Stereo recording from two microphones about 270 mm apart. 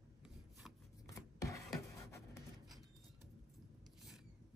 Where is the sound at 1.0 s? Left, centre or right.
Centre.